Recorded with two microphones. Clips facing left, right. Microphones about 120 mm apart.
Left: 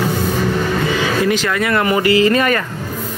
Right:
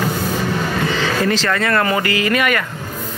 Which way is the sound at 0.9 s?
10° left (ahead or behind).